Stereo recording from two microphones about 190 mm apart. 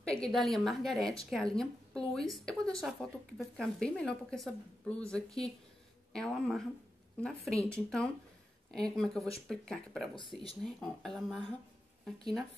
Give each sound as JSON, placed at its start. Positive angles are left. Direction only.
{"t": 0.0, "sound": "a woman's voice", "side_deg": 5}